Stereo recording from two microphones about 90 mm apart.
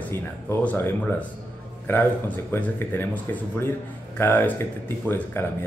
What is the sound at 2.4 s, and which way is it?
A man's voice, 25° left (ahead or behind).